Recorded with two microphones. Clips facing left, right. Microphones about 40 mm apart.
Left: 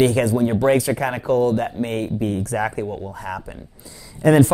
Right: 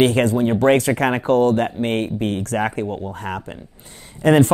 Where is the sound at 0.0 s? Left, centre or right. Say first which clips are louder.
Right 1 dB; right.